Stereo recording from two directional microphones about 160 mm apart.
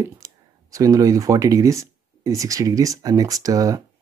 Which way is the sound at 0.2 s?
20° right (ahead or behind).